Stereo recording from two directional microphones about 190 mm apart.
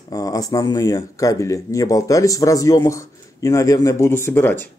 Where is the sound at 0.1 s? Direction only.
20° left (ahead or behind).